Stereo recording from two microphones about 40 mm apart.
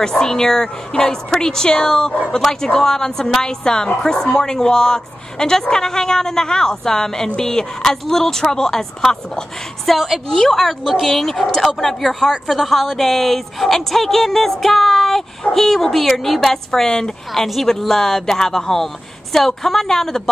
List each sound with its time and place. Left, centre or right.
0.0 s a woman's voice: centre
9.8 s a woman's voice: centre
10.3 s a woman's voice: centre
17.3 s a woman's voice: centre